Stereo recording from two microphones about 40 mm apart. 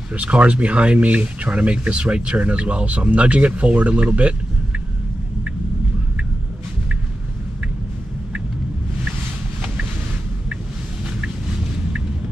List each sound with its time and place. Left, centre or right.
0.1 s speech: right